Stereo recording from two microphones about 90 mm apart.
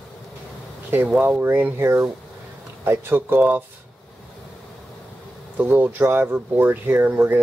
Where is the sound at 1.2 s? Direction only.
20° right (ahead or behind).